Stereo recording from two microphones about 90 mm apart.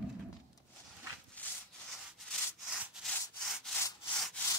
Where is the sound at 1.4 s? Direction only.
20° left (ahead or behind).